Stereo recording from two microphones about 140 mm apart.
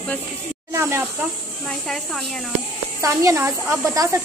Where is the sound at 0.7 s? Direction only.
20° right (ahead or behind).